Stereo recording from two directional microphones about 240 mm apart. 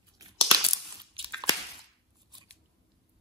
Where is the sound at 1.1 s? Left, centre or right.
Centre.